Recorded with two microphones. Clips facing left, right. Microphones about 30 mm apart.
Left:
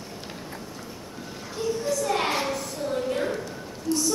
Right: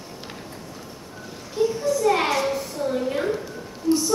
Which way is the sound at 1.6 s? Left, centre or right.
Centre.